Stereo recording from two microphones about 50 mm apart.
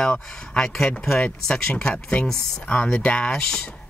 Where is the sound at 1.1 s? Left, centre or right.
Left.